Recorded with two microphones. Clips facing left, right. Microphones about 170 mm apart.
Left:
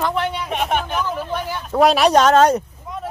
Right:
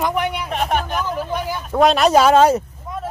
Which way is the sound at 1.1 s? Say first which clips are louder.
Right 1 dB; 10° right (ahead or behind).